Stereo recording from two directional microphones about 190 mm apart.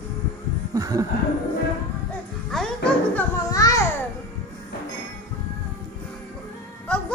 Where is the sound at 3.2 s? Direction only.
15° left (ahead or behind).